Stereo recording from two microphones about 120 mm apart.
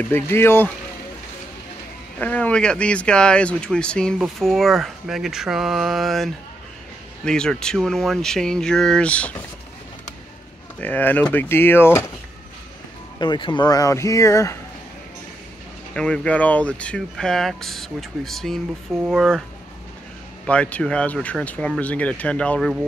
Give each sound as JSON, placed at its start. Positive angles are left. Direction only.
{"t": 0.1, "sound": "speech", "side_deg": 20}
{"t": 2.1, "sound": "speech", "side_deg": 10}
{"t": 10.8, "sound": "speech", "side_deg": 15}
{"t": 13.2, "sound": "speech", "side_deg": 40}
{"t": 15.9, "sound": "speech", "side_deg": 5}
{"t": 20.4, "sound": "speech", "side_deg": 10}